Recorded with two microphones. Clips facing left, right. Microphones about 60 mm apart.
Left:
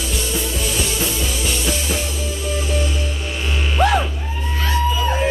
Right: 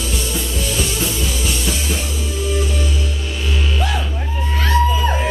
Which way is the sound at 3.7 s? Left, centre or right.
Left.